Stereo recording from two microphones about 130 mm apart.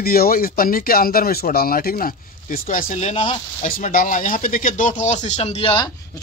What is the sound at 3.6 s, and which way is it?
Speech, 85° left.